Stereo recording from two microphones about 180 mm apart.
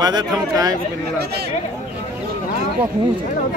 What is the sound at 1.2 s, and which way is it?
Speech, 65° right (ahead or behind).